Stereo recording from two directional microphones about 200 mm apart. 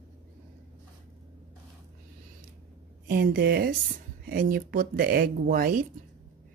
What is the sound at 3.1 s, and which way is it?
Speech, 50° right (ahead or behind).